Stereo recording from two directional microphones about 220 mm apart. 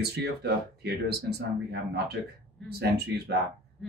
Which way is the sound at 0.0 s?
45° right (ahead or behind).